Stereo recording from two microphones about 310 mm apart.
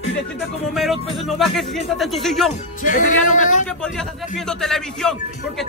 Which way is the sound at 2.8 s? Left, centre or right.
Left.